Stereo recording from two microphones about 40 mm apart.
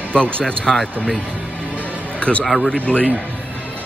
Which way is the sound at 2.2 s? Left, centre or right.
Left.